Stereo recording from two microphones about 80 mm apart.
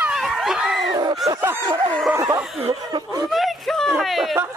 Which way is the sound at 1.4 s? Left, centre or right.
Right.